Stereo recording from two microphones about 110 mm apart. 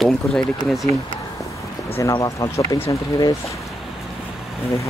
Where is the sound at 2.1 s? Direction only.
35° left (ahead or behind).